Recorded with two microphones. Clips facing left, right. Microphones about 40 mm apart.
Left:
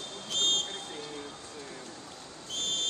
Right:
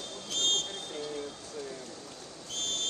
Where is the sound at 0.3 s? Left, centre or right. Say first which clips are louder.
Left 1 dB; left.